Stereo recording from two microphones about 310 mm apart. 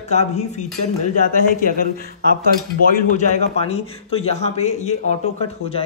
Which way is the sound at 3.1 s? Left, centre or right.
Centre.